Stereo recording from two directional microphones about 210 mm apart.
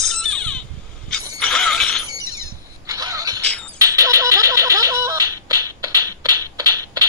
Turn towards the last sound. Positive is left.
turn(degrees=-20)  # may be behind; listen again after turning